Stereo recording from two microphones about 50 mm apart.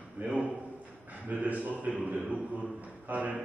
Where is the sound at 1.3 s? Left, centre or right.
Right.